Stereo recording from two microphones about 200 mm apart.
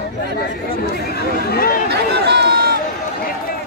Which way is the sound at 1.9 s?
55° right (ahead or behind).